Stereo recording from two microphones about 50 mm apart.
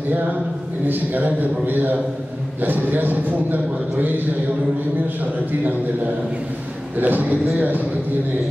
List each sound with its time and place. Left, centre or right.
0.8 s a man's voice: right
7.0 s a man's voice: right